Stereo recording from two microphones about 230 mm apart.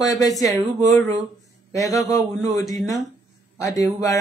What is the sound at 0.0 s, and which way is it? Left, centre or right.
Speech, centre.